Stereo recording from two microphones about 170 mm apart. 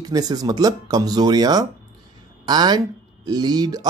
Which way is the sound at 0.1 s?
25° right (ahead or behind).